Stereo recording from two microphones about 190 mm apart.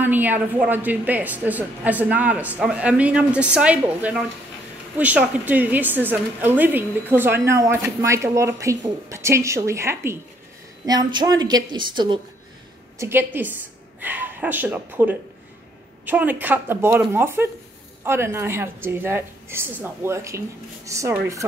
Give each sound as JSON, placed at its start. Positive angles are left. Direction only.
{"t": 0.0, "sound": "a woman's voice", "side_deg": -10}
{"t": 13.0, "sound": "a woman's voice", "side_deg": -10}